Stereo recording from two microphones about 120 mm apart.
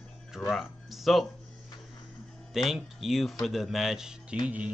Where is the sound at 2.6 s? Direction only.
Centre (ahead or behind).